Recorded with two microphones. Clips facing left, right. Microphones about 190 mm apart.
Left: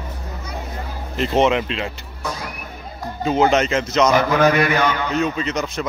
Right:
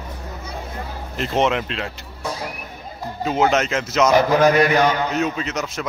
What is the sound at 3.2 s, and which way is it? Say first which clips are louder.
Speech: left 2 dB; centre (ahead or behind).